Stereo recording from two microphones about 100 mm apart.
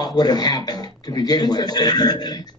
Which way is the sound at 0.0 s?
45° left (ahead or behind).